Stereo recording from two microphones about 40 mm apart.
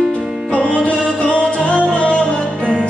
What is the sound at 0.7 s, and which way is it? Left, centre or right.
Music, left.